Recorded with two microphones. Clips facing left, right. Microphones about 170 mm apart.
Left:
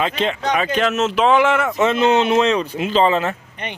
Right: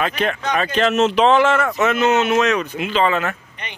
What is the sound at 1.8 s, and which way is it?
Speech, 30° left (ahead or behind).